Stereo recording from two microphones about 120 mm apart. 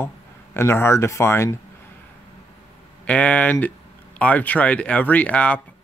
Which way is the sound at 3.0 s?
10° left (ahead or behind).